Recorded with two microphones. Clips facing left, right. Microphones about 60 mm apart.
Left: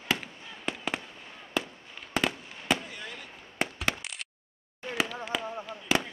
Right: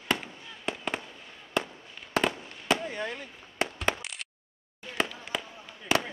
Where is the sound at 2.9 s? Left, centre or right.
Right.